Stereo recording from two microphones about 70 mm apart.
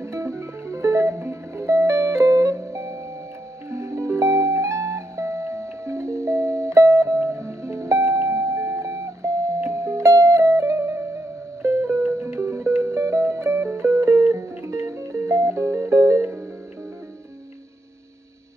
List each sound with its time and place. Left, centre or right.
0.0 s music: right